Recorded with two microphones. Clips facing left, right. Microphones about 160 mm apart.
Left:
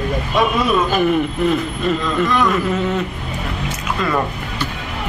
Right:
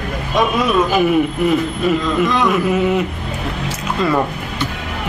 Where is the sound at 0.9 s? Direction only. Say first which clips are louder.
Right 2 dB; 5° right (ahead or behind).